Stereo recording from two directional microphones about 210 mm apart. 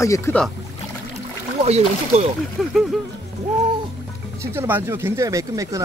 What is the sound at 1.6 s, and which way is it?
Speech, 30° right (ahead or behind).